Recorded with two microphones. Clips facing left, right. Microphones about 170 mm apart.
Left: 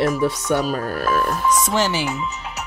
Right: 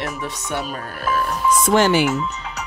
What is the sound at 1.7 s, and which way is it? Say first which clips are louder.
Speech: right 5 dB; 55° right (ahead or behind).